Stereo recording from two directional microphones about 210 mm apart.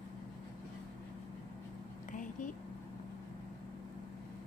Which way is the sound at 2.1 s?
40° left (ahead or behind).